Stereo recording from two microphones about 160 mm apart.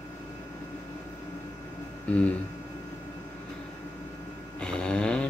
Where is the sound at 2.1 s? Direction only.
10° left (ahead or behind).